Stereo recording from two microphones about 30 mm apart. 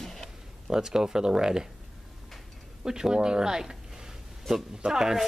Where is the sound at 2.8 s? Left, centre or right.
Right.